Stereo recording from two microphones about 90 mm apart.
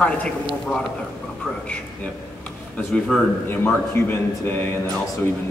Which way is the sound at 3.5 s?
25° left (ahead or behind).